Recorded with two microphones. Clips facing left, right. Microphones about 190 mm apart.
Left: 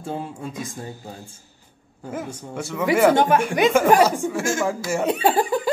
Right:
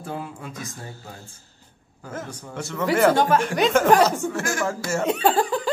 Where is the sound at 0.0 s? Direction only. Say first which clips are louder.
Left 3 dB; 25° left (ahead or behind).